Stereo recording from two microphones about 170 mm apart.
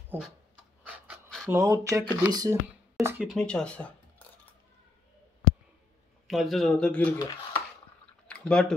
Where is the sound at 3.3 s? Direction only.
5° left (ahead or behind).